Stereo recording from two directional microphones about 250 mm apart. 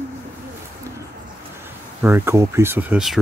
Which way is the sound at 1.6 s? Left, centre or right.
Centre.